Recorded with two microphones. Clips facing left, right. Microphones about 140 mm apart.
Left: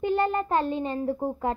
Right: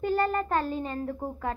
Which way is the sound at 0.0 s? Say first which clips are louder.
Left 2 dB; 25° left (ahead or behind).